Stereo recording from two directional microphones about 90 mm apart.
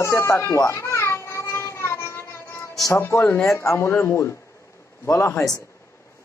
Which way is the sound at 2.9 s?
30° left (ahead or behind).